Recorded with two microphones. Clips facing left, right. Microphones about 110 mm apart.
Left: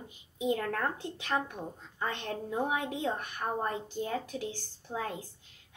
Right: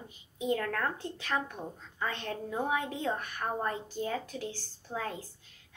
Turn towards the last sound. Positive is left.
turn(degrees=15)  # may be behind; listen again after turning